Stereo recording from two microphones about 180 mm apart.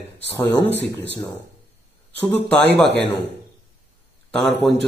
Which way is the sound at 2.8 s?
70° right (ahead or behind).